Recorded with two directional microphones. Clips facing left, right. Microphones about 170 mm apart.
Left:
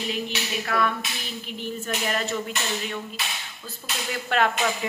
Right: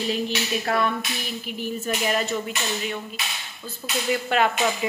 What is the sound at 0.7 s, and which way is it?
Clapping, 35° right (ahead or behind).